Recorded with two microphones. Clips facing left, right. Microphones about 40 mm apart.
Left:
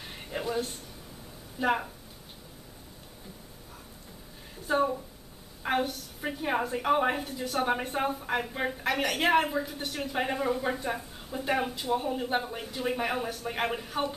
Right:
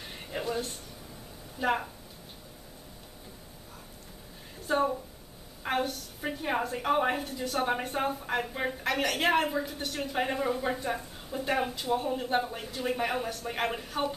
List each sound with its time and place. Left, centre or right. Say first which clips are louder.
0.0 s a sound: even; centre
1.6 s a woman's voice: left 1 dB; centre
4.6 s a woman's voice: left 1 dB; centre